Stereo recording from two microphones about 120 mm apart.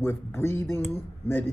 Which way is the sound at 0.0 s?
20° left (ahead or behind).